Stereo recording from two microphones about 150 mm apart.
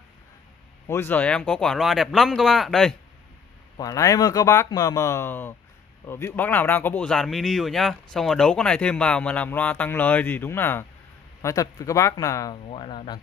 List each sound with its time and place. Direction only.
0.8 s speech: 15° left (ahead or behind)
3.7 s speech: 20° left (ahead or behind)
12.6 s speech: 35° left (ahead or behind)